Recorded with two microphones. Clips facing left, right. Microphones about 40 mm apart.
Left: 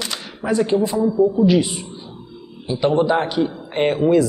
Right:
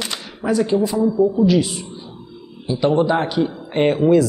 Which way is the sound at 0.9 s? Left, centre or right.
Centre.